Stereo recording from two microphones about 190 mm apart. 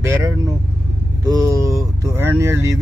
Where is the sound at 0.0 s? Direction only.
15° right (ahead or behind).